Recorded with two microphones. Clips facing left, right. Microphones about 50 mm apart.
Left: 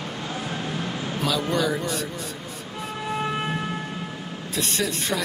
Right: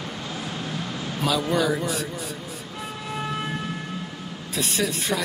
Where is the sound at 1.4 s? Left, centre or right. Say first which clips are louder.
Right 2 dB; centre.